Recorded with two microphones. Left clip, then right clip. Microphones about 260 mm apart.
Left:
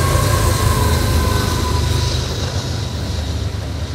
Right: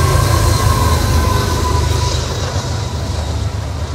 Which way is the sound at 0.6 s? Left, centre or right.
Right.